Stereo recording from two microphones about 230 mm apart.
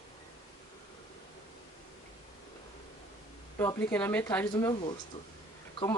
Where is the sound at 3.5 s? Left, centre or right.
Centre.